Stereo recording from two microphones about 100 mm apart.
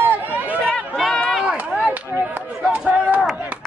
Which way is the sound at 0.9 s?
Centre (ahead or behind).